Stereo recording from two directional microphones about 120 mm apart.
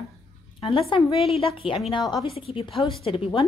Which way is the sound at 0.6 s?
50° left (ahead or behind).